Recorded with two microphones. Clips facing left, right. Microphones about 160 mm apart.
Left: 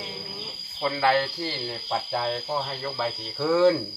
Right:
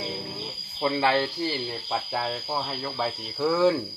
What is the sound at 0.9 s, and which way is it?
Speech, 20° right (ahead or behind).